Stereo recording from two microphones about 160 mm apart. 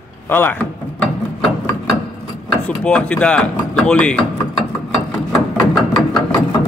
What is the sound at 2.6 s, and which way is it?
Speech, 10° left (ahead or behind).